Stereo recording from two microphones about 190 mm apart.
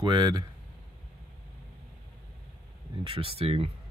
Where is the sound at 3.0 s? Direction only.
30° right (ahead or behind).